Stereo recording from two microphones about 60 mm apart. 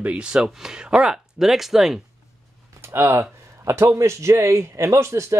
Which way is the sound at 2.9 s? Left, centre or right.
Right.